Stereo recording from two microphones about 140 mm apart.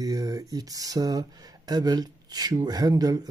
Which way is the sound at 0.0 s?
25° right (ahead or behind).